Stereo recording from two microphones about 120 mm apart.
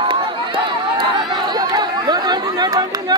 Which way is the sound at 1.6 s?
35° right (ahead or behind).